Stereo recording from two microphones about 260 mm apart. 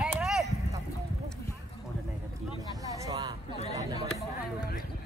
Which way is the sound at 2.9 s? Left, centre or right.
Centre.